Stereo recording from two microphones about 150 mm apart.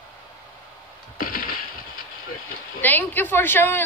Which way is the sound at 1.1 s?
75° left (ahead or behind).